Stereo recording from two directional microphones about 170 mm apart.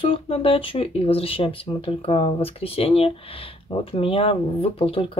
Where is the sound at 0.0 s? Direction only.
35° left (ahead or behind).